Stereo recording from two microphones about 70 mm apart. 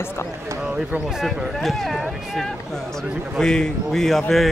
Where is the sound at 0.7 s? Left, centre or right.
Centre.